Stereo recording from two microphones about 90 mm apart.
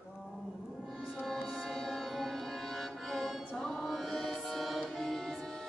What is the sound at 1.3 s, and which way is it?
Music, 5° left (ahead or behind).